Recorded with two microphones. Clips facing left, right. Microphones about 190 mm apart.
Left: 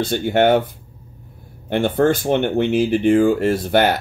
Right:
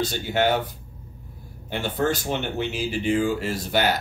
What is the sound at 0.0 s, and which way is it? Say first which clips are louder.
Speech: left 7 dB; 55° left (ahead or behind).